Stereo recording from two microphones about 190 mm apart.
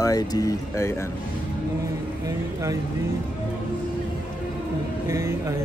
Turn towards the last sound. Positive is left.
turn(degrees=-15)  # may be behind; listen again after turning